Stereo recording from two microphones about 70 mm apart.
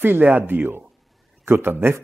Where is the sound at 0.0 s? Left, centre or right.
Right.